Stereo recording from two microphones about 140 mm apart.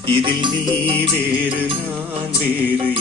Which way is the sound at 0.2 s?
35° right (ahead or behind).